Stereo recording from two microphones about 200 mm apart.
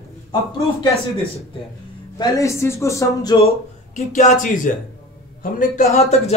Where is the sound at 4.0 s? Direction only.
40° left (ahead or behind).